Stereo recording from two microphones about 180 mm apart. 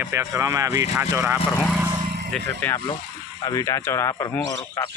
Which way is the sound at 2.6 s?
10° left (ahead or behind).